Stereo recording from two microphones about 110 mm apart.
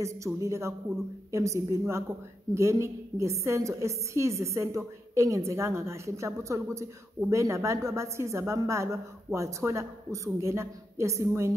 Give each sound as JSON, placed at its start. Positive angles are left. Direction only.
{"t": 0.0, "sound": "a woman's voice", "side_deg": -25}